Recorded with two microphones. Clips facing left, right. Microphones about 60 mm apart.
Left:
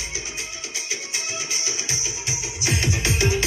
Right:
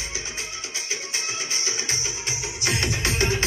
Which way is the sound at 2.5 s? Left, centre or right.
Right.